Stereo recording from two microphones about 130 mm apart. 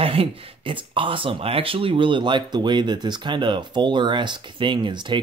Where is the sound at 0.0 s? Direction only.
45° right (ahead or behind).